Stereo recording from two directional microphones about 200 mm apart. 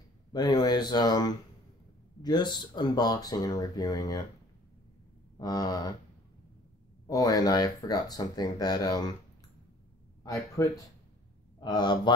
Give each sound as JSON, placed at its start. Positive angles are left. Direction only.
{"t": 0.3, "sound": "speech", "side_deg": 20}
{"t": 5.4, "sound": "speech", "side_deg": 20}
{"t": 7.1, "sound": "speech", "side_deg": 20}
{"t": 10.2, "sound": "speech", "side_deg": 15}